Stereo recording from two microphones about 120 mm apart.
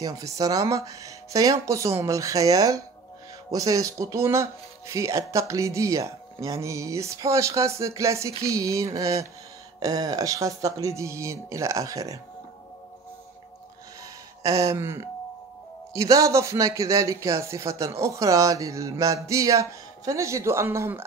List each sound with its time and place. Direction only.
0.0 s speech: 30° right (ahead or behind)
14.4 s speech: 30° right (ahead or behind)